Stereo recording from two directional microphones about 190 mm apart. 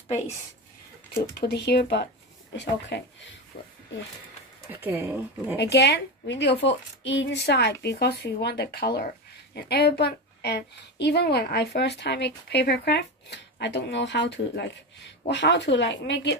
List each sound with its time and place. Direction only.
1.3 s a woman's voice: 60° left (ahead or behind)
3.5 s speech: 55° left (ahead or behind)
4.6 s speech: 10° right (ahead or behind)
5.6 s a woman's voice: 60° left (ahead or behind)